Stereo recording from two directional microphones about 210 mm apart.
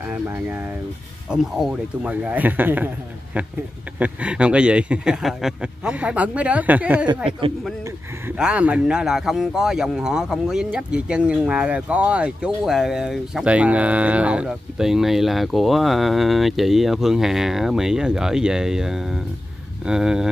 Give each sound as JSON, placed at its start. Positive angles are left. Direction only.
{"t": 0.1, "sound": "a man's voice", "side_deg": -10}
{"t": 4.0, "sound": "speech", "side_deg": -5}
{"t": 7.2, "sound": "a man's voice", "side_deg": -25}
{"t": 8.3, "sound": "speech", "side_deg": -5}